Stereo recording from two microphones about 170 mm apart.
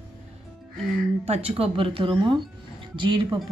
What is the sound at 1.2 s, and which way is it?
Speech, 35° right (ahead or behind).